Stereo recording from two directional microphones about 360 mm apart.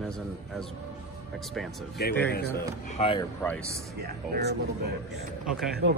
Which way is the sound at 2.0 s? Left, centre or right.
Left.